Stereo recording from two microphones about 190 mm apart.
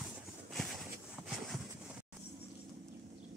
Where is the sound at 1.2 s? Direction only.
5° right (ahead or behind).